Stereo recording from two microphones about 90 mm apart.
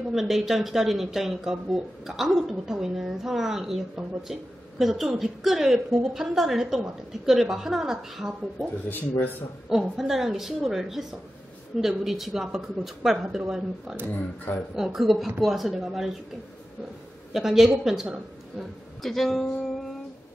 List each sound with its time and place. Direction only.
0.1 s speech: centre (ahead or behind)
9.7 s speech: 5° right (ahead or behind)
14.1 s speech: 20° left (ahead or behind)
14.8 s speech: centre (ahead or behind)
17.3 s speech: 5° right (ahead or behind)
19.0 s speech: centre (ahead or behind)